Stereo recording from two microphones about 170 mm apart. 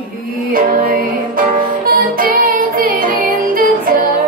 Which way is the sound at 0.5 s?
55° right (ahead or behind).